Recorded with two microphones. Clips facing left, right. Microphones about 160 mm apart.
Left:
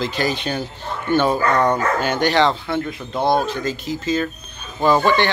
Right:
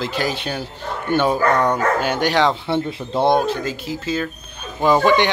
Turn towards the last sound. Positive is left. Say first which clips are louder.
# right 1 dB
turn(degrees=-15)  # may be behind; listen again after turning